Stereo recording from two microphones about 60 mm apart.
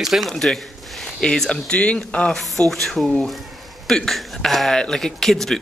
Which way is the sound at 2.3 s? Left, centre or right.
Centre.